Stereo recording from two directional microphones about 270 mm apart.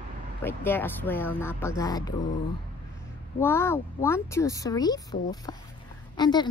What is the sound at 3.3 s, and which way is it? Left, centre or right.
Speech, centre.